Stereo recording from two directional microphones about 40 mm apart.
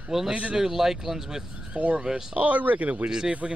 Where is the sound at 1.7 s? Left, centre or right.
Right.